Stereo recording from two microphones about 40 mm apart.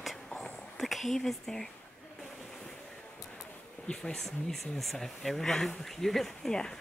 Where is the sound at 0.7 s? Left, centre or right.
Centre.